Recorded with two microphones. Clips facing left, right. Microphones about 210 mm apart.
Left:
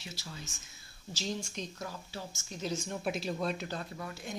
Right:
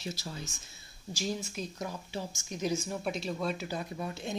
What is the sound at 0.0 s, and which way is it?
Speech, 40° right (ahead or behind).